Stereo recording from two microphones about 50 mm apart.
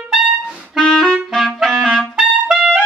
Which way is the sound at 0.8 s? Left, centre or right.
Centre.